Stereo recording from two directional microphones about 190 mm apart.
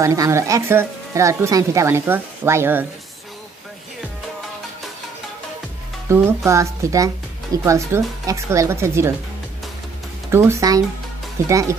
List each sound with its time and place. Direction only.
0.0 s speech: 15° right (ahead or behind)
6.0 s speech: 15° right (ahead or behind)
10.3 s speech: 15° right (ahead or behind)